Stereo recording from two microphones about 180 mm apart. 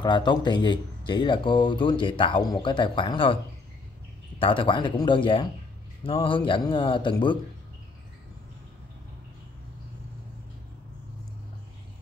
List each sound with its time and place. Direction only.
0.0 s speech: 25° left (ahead or behind)
4.4 s speech: 30° left (ahead or behind)